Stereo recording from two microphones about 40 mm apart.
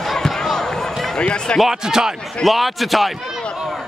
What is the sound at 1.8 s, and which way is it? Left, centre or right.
Speech, centre.